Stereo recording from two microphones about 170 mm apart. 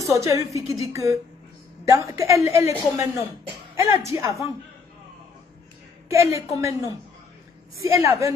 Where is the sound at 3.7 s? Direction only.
15° right (ahead or behind).